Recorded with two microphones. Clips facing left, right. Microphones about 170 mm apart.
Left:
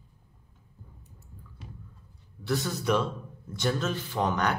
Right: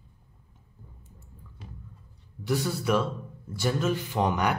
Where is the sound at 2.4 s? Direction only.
10° right (ahead or behind).